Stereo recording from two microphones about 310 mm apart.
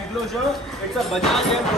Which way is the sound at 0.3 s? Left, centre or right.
Centre.